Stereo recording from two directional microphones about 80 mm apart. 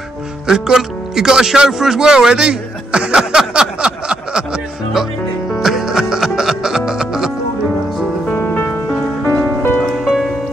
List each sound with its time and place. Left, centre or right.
0.5 s speech: centre
5.6 s music: centre
8.3 s music: left